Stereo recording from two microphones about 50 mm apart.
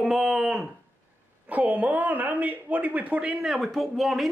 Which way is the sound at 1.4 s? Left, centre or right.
Right.